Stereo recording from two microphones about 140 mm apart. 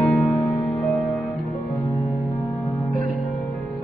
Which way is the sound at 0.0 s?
Centre (ahead or behind).